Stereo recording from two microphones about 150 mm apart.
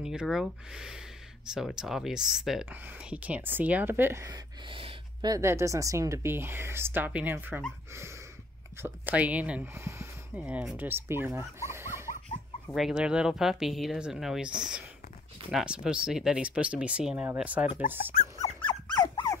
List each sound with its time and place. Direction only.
0.0 s a woman's voice: 5° right (ahead or behind)
4.6 s a woman's voice: 35° right (ahead or behind); by 7.6 s 15° right (ahead or behind)
8.8 s a woman's voice: 10° right (ahead or behind)
10.4 s a woman's voice: 5° right (ahead or behind)
12.7 s a woman's voice: 5° right (ahead or behind)
18.6 s dog: 30° left (ahead or behind)